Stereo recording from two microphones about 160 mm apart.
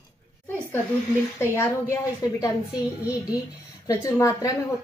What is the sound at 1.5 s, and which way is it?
Speech, 15° left (ahead or behind).